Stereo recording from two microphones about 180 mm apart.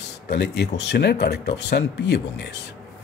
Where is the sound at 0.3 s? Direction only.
70° left (ahead or behind).